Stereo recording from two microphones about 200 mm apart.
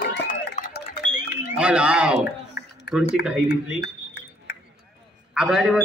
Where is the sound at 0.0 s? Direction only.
50° left (ahead or behind).